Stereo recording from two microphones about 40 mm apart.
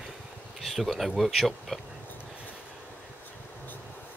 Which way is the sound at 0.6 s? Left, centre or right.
Centre.